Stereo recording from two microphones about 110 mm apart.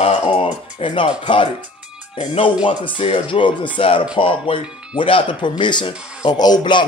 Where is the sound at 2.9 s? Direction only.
50° left (ahead or behind).